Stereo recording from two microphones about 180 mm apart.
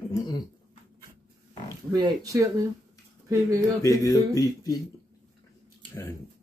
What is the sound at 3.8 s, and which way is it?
Speech, 20° left (ahead or behind).